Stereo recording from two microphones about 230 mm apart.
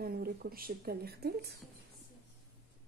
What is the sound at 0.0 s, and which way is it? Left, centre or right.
Speech, right.